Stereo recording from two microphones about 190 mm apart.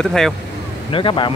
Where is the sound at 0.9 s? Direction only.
25° left (ahead or behind).